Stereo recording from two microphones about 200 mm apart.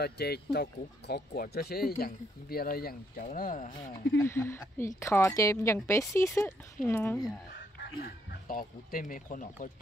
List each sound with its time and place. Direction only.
0.0 s speech: 55° left (ahead or behind)
4.2 s a woman's voice: 10° left (ahead or behind)
8.0 s speech: 45° left (ahead or behind)